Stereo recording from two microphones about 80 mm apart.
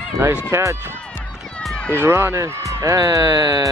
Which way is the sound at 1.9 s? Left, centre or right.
Right.